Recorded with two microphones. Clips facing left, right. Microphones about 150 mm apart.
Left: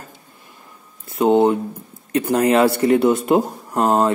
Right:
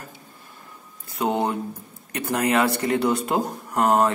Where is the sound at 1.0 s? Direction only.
25° left (ahead or behind).